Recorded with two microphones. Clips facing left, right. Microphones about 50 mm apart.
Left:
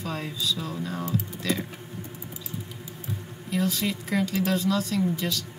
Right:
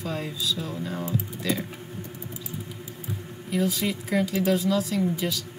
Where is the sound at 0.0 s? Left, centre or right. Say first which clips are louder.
Right 1 dB; centre.